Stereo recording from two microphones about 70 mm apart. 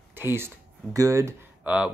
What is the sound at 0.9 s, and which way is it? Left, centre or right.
Speech, right.